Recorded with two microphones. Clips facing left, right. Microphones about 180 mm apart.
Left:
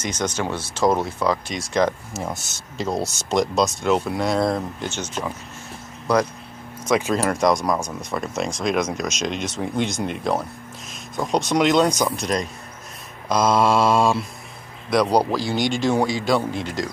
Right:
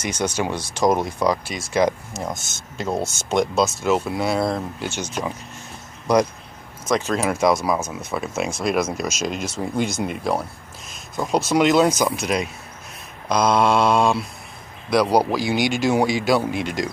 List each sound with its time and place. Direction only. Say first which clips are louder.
0.0 s speech: right 1 dB; 10° right (ahead or behind)
7.2 s speech: even; 5° right (ahead or behind)